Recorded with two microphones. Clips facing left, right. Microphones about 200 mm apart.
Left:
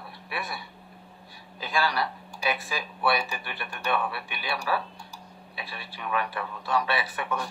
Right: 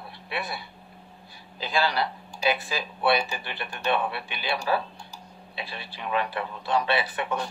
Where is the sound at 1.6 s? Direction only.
25° right (ahead or behind).